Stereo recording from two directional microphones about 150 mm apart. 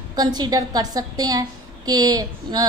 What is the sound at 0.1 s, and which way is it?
A woman's voice, 25° right (ahead or behind).